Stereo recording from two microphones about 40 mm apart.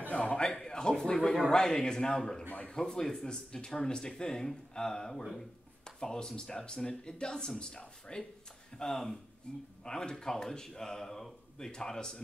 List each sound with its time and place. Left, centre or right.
0.2 s a man's voice: left
5.9 s a sound: left
6.2 s speech: centre